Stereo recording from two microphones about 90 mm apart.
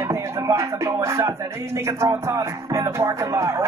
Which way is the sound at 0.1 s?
35° right (ahead or behind).